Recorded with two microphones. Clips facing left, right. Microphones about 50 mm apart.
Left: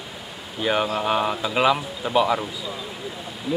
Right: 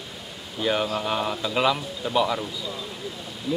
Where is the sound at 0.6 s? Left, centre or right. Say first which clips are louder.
Left 2 dB; centre.